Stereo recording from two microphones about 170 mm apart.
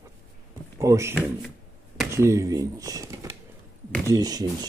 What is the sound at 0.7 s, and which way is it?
Speech, 15° right (ahead or behind).